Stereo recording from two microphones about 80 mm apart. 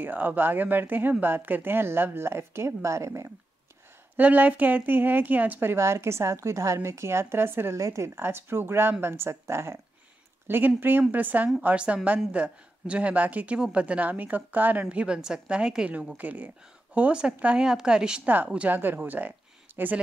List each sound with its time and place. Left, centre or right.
0.0 s a woman's voice: right
4.2 s a woman's voice: right